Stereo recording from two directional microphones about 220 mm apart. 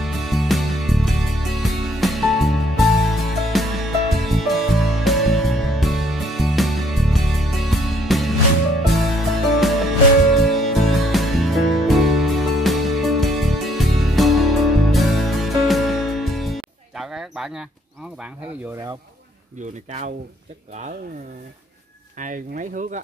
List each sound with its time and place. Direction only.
0.0 s music: centre (ahead or behind)
19.6 s speech: 30° right (ahead or behind)
22.2 s speech: 35° right (ahead or behind)